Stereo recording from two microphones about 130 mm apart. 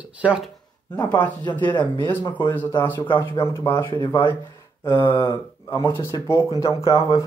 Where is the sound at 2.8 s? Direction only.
15° left (ahead or behind).